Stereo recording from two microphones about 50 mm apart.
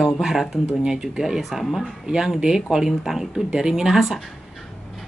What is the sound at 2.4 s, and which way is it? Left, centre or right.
Speech, centre.